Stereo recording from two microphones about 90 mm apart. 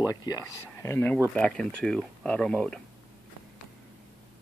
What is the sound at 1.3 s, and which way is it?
Speech, 10° left (ahead or behind).